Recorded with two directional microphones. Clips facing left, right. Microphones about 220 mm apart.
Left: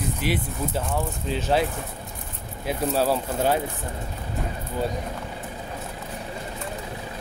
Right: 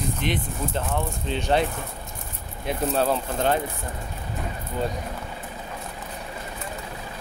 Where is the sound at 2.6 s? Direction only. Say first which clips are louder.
Even; 5° left (ahead or behind).